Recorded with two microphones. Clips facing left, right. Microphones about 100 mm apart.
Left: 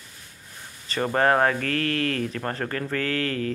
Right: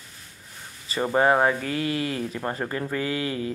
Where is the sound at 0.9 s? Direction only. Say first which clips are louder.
Right 1 dB; 10° right (ahead or behind).